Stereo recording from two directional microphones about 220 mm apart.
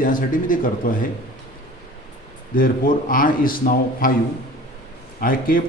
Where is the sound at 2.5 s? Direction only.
40° left (ahead or behind).